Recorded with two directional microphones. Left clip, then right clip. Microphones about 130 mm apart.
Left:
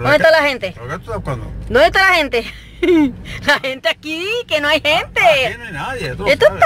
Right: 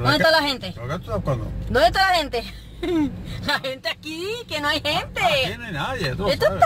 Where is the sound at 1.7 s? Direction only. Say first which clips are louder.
Left 6 dB; 20° left (ahead or behind).